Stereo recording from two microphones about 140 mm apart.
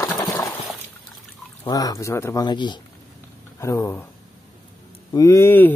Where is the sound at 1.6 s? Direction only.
25° left (ahead or behind).